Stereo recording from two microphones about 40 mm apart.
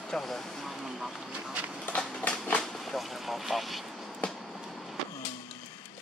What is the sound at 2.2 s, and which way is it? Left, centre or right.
Train, left.